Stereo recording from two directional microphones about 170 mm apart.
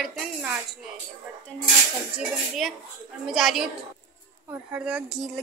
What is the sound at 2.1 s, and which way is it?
A woman's voice, centre (ahead or behind).